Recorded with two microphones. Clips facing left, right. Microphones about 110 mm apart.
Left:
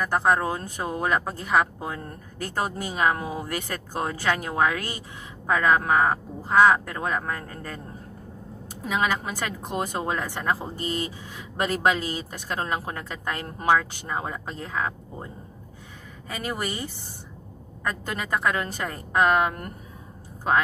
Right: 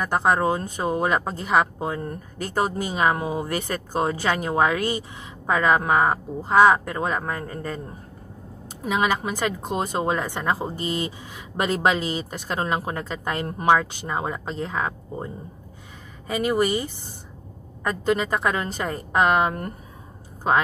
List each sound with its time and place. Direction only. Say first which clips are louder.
0.0 s a woman's voice: right 2 dB; 20° right (ahead or behind)
8.8 s a woman's voice: right 3 dB; 15° right (ahead or behind)
16.3 s speech: right 9 dB; 20° right (ahead or behind)
17.8 s a woman's voice: right 7 dB; 25° right (ahead or behind)